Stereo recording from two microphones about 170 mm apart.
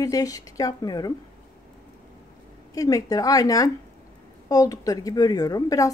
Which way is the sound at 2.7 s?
20° left (ahead or behind).